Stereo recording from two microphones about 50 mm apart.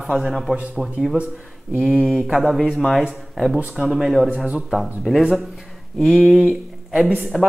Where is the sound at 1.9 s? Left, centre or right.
Centre.